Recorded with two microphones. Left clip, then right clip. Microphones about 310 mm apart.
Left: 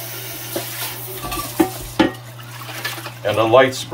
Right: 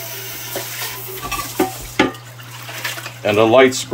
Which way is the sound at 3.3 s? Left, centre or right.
Right.